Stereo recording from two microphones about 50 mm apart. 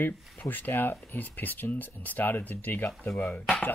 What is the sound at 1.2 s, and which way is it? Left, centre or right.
Speech, left.